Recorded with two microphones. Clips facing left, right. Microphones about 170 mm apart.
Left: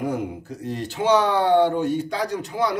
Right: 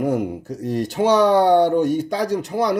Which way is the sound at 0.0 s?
45° right (ahead or behind).